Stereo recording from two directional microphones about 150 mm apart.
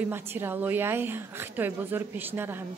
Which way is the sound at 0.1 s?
15° right (ahead or behind).